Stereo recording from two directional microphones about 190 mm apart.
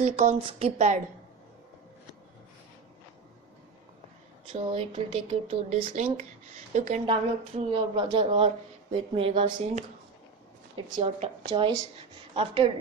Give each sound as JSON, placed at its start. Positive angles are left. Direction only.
{"t": 0.0, "sound": "speech", "side_deg": -35}
{"t": 4.5, "sound": "speech", "side_deg": -30}
{"t": 7.1, "sound": "a woman's voice", "side_deg": -30}
{"t": 11.0, "sound": "a woman's voice", "side_deg": -30}